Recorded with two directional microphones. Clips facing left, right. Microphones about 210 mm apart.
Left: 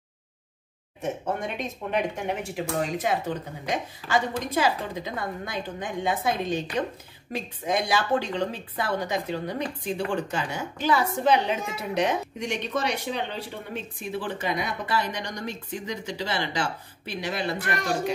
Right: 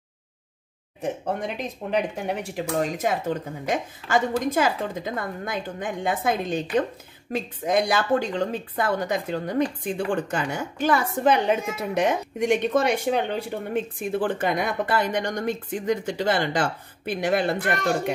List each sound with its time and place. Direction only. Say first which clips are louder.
1.0 s speech: right 2 dB; 35° right (ahead or behind); by 18.1 s 50° right (ahead or behind)